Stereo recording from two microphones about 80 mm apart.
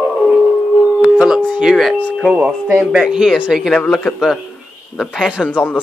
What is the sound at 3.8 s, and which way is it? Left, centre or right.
Speech, centre.